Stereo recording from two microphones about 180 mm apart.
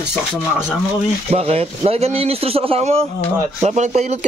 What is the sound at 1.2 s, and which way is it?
Speech, 35° right (ahead or behind).